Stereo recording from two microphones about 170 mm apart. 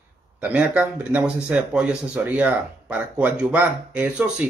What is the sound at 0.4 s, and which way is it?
A man's voice, 10° right (ahead or behind).